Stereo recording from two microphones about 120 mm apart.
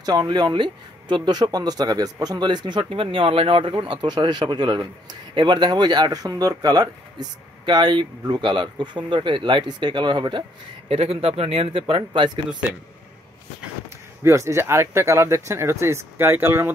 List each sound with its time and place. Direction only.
0.0 s speech: 35° right (ahead or behind)
10.9 s speech: 55° right (ahead or behind)
14.2 s speech: 25° right (ahead or behind)